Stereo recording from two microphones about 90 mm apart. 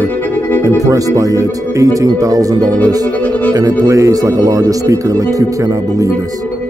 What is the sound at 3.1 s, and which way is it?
Music, 15° left (ahead or behind).